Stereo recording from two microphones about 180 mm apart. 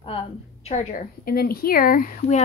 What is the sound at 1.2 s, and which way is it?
Speech, 55° left (ahead or behind).